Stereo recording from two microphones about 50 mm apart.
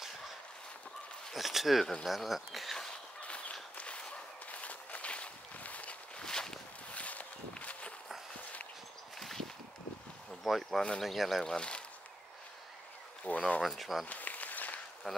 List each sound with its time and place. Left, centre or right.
1.3 s speech: centre
2.9 s a sound: left
3.7 s walk: left
6.2 s walk: centre
6.9 s walk: left
10.4 s a sound: centre
11.0 s speech: centre
11.4 s speech: centre
13.2 s speech: left
13.6 s speech: centre
14.0 s a sound: left
15.0 s speech: centre